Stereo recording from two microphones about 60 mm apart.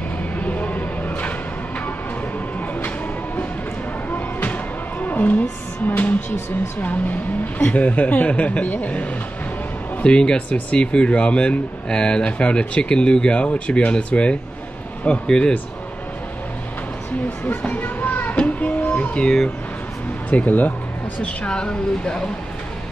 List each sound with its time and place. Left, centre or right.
0.4 s a sound: left
4.1 s music: left
6.8 s speech: left
10.0 s speech: centre
17.5 s a sound: left
19.2 s speech: centre
20.2 s speech: left
21.2 s speech: centre